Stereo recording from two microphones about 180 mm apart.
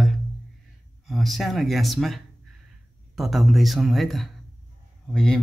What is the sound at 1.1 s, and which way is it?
Speech, centre (ahead or behind).